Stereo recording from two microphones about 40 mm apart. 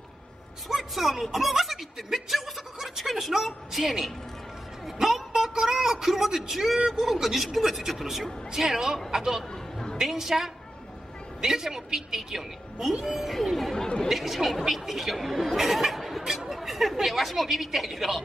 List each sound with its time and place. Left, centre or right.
0.7 s a woman's voice: centre
5.3 s a man's voice: centre
9.5 s a sound: centre
10.1 s a woman's voice: centre
13.7 s speech: centre
14.0 s a woman's voice: centre